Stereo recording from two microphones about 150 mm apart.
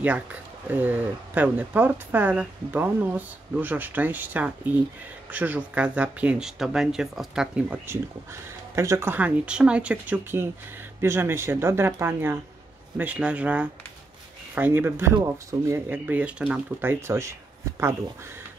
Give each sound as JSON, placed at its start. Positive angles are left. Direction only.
{"t": 0.0, "sound": "speech", "side_deg": -10}